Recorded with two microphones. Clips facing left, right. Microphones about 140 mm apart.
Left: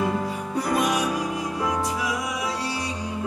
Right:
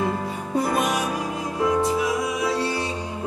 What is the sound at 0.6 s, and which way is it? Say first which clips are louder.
Music: right 1 dB; 25° right (ahead or behind).